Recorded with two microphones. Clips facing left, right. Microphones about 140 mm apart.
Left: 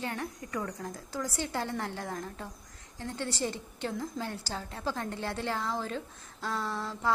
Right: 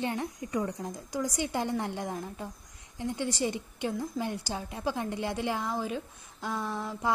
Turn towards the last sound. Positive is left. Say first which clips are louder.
# right 1 dB
turn(degrees=-15)  # may be behind; listen again after turning